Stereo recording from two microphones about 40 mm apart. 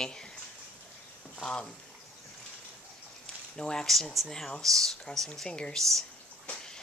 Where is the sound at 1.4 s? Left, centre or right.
Left.